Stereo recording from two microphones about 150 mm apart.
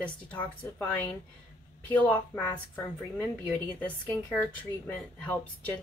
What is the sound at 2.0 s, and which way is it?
A woman's voice, 10° left (ahead or behind).